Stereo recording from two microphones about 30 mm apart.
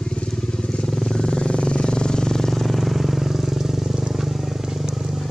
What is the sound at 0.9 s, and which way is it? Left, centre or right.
Vehicle, centre.